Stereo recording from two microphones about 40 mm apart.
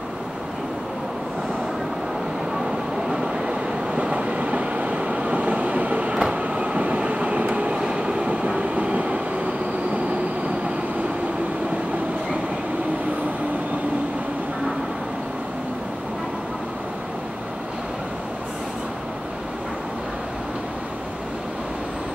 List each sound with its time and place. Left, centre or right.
3.4 s train: right
6.1 s train: right
7.7 s train: right